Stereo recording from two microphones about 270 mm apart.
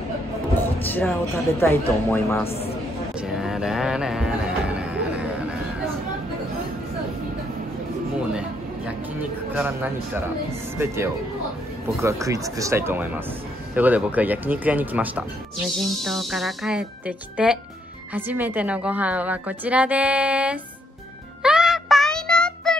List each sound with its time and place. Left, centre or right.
0.8 s speech: centre
2.4 s a man's voice: left
3.2 s music: centre
8.3 s a sound: centre
9.6 s speech: centre
12.0 s speech: centre
21.4 s music: centre